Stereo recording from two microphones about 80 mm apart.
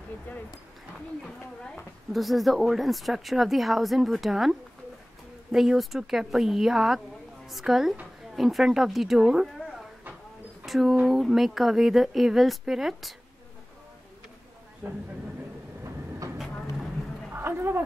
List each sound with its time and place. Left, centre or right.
0.3 s speech: left
2.1 s speech: centre
10.6 s speech: centre
14.8 s speech: right
17.3 s a sound: right